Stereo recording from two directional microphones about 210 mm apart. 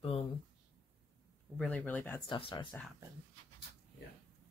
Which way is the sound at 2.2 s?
20° left (ahead or behind).